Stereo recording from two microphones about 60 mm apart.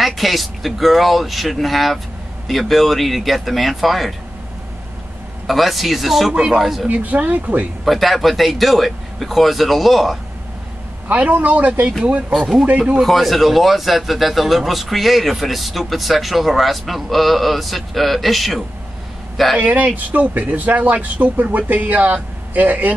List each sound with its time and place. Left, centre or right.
0.0 s speech: centre
5.5 s speech: centre
6.3 s speech: centre
6.6 s speech: centre
6.9 s speech: right
7.8 s speech: centre
11.1 s speech: right
12.3 s speech: centre
12.6 s speech: centre
13.0 s speech: centre
19.6 s speech: right